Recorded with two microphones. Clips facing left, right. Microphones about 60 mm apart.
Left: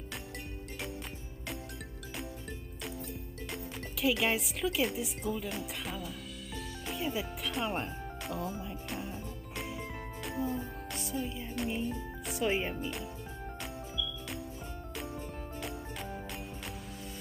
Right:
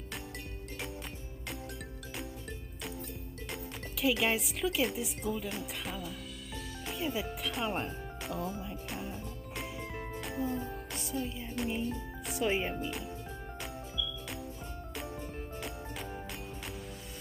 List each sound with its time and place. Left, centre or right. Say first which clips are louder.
3.5 s music: left 1 dB; centre
12.8 s speech: even; centre
13.6 s music: even; centre